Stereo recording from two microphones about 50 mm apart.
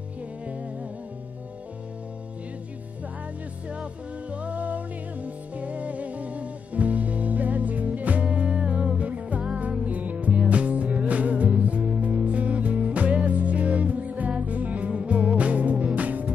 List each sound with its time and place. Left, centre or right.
3.6 s music: right